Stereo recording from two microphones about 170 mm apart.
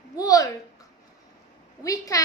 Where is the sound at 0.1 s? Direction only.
20° left (ahead or behind).